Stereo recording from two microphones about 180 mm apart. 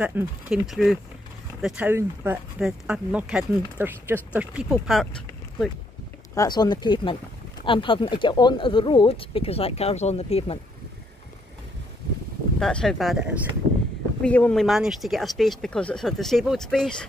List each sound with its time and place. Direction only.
0.0 s speech: 5° right (ahead or behind)
6.3 s speech: 20° left (ahead or behind)
12.5 s speech: centre (ahead or behind)